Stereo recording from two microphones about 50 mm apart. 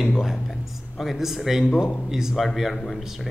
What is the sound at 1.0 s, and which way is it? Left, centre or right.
Speech, centre.